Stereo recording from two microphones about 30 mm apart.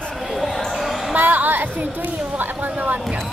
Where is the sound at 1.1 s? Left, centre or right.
Right.